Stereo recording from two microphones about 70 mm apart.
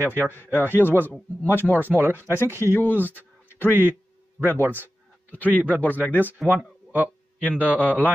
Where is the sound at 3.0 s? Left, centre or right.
Left.